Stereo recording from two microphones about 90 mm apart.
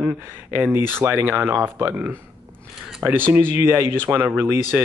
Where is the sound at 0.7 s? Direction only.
25° right (ahead or behind).